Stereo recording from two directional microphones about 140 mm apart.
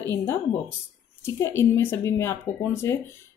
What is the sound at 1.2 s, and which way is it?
A woman's voice, 20° left (ahead or behind).